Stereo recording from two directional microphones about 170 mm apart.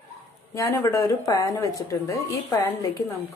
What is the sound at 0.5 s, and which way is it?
Speech, 20° left (ahead or behind).